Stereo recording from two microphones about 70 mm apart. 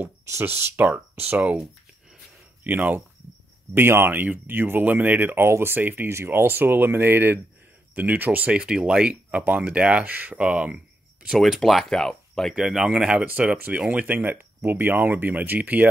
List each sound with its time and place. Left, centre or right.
0.3 s speech: right
2.6 s speech: right
3.7 s speech: right
6.0 s speech: right; by 10.8 s centre
11.2 s speech: centre
12.5 s speech: centre